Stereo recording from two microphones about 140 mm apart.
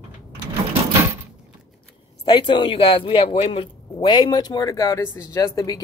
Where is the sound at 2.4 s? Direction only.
35° left (ahead or behind).